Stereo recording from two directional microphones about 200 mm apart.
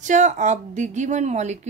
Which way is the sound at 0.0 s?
35° right (ahead or behind).